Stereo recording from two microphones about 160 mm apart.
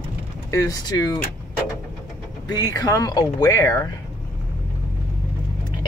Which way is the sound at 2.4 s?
25° left (ahead or behind).